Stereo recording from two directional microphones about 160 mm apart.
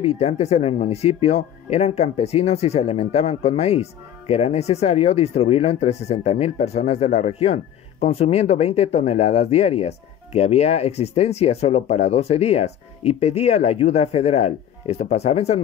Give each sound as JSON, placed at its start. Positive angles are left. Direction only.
{"t": 0.0, "sound": "speech", "side_deg": 40}